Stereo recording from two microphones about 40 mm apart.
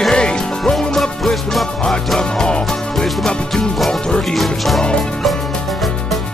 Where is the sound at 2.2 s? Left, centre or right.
Centre.